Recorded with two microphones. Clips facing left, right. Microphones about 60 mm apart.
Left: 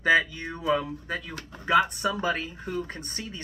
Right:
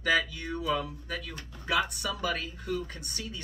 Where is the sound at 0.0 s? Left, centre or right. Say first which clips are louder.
Left 5 dB; left.